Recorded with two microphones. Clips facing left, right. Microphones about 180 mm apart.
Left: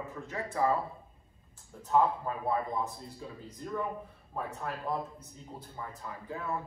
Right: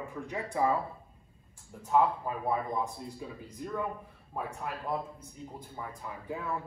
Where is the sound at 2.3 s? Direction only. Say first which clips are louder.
Even; 10° right (ahead or behind).